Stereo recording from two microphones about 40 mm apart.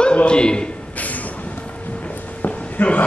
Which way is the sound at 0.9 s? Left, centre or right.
Left.